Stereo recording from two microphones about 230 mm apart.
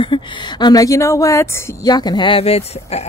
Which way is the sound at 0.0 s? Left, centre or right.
Left.